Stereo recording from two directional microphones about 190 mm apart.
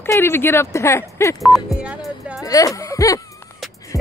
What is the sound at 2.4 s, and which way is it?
Speech, 20° left (ahead or behind).